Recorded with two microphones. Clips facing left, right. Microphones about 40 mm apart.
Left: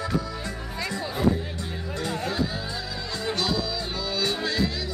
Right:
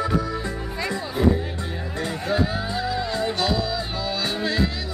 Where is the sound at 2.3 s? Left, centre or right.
Right.